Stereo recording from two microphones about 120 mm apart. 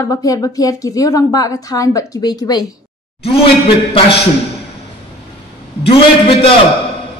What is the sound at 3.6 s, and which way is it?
Speech, 50° left (ahead or behind).